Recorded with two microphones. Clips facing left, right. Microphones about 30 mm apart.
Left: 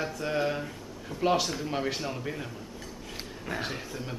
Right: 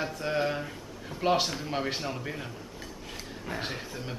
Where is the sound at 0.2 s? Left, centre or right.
Centre.